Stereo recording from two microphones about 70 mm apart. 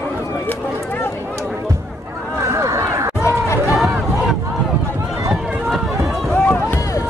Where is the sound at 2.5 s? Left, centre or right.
Right.